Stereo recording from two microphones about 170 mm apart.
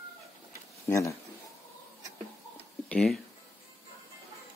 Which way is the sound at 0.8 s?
20° left (ahead or behind).